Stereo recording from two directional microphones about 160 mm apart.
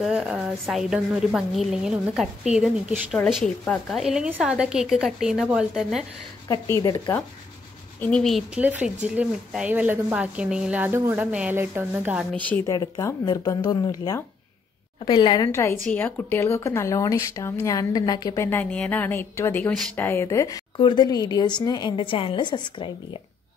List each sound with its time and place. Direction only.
0.0 s a woman's voice: 5° right (ahead or behind)
6.5 s a woman's voice: 20° left (ahead or behind)
8.0 s speech: 5° left (ahead or behind)
12.4 s speech: 10° left (ahead or behind)
12.6 s a woman's voice: 20° left (ahead or behind)
15.0 s a woman's voice: 30° left (ahead or behind)